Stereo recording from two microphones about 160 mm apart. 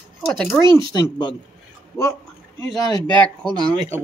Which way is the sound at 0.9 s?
25° left (ahead or behind).